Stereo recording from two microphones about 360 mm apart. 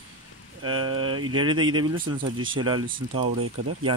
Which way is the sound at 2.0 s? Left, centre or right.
Right.